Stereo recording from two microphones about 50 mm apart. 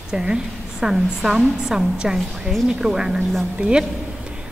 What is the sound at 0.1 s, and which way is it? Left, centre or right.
A woman's voice, centre.